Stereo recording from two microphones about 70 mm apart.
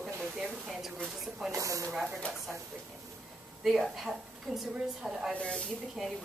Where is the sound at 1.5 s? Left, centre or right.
Right.